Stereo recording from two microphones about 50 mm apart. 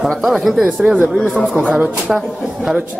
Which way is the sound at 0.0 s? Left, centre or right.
Centre.